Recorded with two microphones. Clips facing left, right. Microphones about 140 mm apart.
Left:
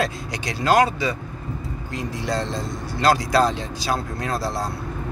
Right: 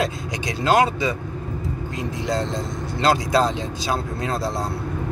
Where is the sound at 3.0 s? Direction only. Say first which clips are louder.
Left 1 dB; 20° right (ahead or behind).